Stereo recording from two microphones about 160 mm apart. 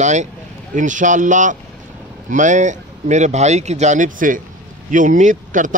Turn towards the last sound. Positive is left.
turn(degrees=-55)  # may be behind; listen again after turning